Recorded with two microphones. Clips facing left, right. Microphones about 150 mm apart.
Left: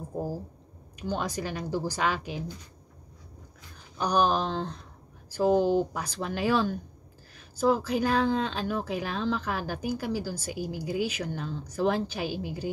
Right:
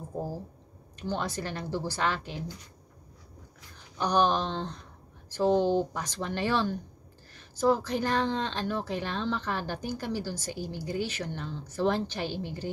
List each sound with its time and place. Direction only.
0.9 s speech: 15° left (ahead or behind)
4.0 s speech: 10° left (ahead or behind)